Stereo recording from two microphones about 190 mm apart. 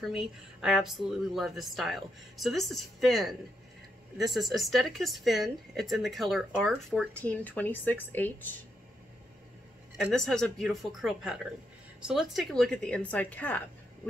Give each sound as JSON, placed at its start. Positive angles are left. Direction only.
{"t": 0.0, "sound": "a woman's voice", "side_deg": 0}
{"t": 9.9, "sound": "a woman's voice", "side_deg": 0}